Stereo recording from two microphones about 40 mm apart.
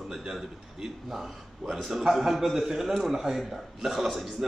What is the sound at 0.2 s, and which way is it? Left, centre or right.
A man's voice, centre.